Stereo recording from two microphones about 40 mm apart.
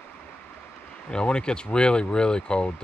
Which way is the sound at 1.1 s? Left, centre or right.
Left.